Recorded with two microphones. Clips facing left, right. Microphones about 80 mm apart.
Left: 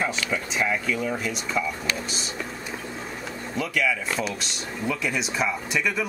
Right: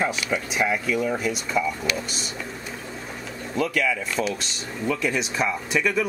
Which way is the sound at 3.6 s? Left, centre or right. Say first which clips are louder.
Right 2 dB; centre.